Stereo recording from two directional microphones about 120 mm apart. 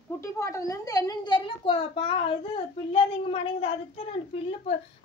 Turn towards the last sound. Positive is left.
turn(degrees=55)  # may be behind; listen again after turning